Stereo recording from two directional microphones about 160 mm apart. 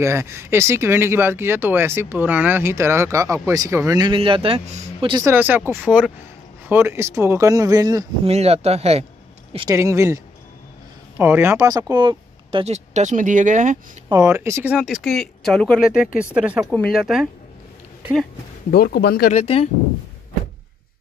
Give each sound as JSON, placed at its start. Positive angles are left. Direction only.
{"t": 0.0, "sound": "speech", "side_deg": -15}
{"t": 5.1, "sound": "speech", "side_deg": -15}
{"t": 8.3, "sound": "speech", "side_deg": -40}
{"t": 9.7, "sound": "speech", "side_deg": -15}
{"t": 14.0, "sound": "speech", "side_deg": -20}
{"t": 16.2, "sound": "speech", "side_deg": -10}
{"t": 16.7, "sound": "speech", "side_deg": 5}
{"t": 18.7, "sound": "speech", "side_deg": 75}
{"t": 19.3, "sound": "speech", "side_deg": 40}